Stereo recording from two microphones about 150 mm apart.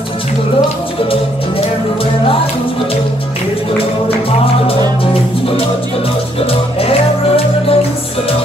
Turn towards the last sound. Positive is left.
turn(degrees=40)  # may be behind; listen again after turning